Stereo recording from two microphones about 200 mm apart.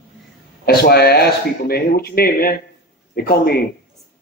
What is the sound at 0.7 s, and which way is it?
A man's voice, 50° left (ahead or behind).